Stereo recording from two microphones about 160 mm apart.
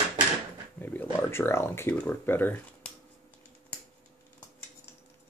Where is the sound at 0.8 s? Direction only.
10° left (ahead or behind).